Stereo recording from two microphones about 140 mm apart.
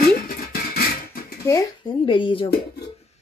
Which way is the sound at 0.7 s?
90° left.